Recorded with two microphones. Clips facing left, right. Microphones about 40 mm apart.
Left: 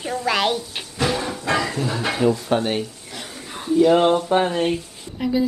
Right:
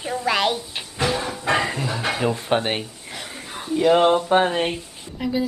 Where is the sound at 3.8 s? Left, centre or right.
Centre.